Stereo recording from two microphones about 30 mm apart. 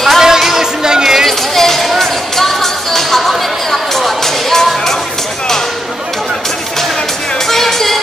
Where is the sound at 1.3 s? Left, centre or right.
Centre.